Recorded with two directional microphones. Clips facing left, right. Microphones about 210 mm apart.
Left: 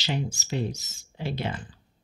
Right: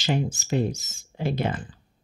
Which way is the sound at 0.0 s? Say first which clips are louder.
Right 5 dB; 50° right (ahead or behind).